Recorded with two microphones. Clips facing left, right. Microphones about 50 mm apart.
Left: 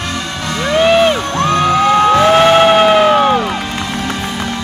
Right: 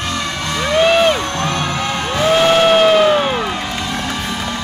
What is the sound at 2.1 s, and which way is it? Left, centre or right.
Emergency vehicle, left.